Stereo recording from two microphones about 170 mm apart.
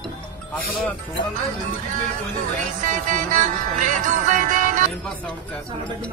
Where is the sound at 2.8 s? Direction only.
50° right (ahead or behind).